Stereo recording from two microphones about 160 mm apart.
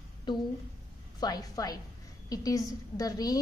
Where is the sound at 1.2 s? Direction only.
25° left (ahead or behind).